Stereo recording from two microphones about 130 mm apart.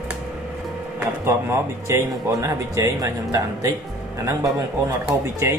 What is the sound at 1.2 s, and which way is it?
Speech, 20° right (ahead or behind).